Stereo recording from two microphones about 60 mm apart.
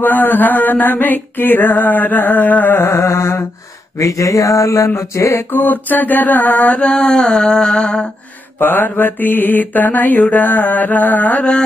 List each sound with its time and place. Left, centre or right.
0.0 s music: left
3.0 s mantra: left
4.0 s a sound: left
5.5 s mantra: left
7.0 s a sound: centre
8.5 s music: left
10.3 s mantra: left
11.3 s music: centre